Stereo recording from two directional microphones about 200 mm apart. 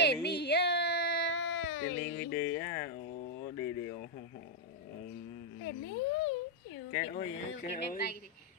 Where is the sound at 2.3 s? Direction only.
15° left (ahead or behind).